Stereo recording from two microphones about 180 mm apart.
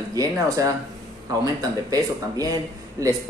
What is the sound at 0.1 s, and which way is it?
Speech, 20° right (ahead or behind).